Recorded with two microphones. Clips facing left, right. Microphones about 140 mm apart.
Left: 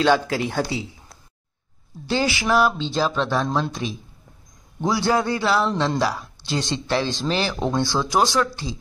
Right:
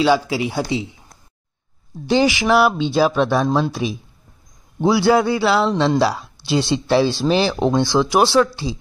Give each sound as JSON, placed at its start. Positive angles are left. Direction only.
{"t": 0.0, "sound": "speech", "side_deg": -10}
{"t": 0.7, "sound": "speech", "side_deg": -20}
{"t": 6.0, "sound": "a sound", "side_deg": -30}
{"t": 6.4, "sound": "speech", "side_deg": -10}